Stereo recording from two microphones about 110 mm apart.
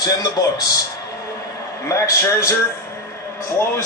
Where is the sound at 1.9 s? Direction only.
30° left (ahead or behind).